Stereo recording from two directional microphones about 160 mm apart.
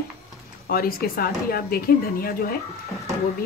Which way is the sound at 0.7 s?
65° left (ahead or behind).